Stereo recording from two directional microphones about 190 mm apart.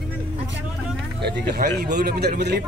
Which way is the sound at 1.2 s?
60° right (ahead or behind).